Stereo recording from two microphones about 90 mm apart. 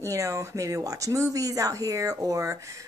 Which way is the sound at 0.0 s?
35° right (ahead or behind).